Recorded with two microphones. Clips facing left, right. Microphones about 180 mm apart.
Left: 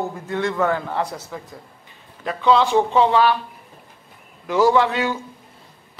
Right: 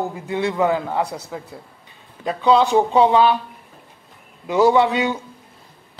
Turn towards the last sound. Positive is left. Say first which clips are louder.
# right 2 dB
turn(degrees=-20)  # may be behind; listen again after turning